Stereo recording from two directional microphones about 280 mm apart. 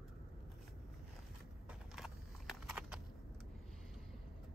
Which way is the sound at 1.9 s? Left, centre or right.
Centre.